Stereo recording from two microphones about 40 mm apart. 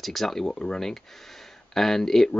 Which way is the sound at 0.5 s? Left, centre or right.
Left.